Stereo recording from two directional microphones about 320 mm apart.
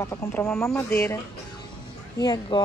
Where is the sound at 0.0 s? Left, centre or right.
Centre.